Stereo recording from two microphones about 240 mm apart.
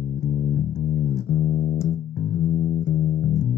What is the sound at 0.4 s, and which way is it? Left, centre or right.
Music, left.